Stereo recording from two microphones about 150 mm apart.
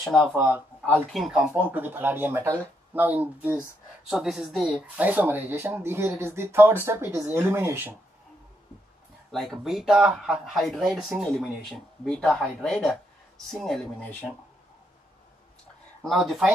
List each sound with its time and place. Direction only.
0.0 s speech: 5° left (ahead or behind)
0.3 s speech: 15° right (ahead or behind)
1.1 s speech: centre (ahead or behind)
9.3 s speech: centre (ahead or behind)
16.0 s speech: centre (ahead or behind)